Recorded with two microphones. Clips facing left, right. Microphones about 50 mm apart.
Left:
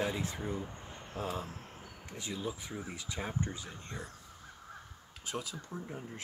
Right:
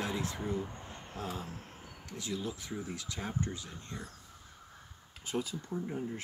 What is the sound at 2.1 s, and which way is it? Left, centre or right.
Speech, left.